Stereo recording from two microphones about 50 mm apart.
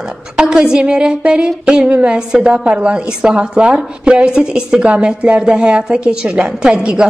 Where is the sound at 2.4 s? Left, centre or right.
Right.